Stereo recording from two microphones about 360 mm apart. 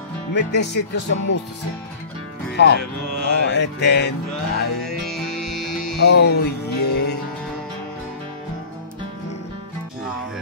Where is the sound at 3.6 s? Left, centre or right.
Left.